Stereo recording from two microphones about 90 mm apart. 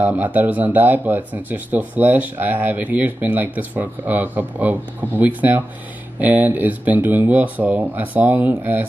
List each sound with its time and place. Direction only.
0.0 s speech: 20° right (ahead or behind)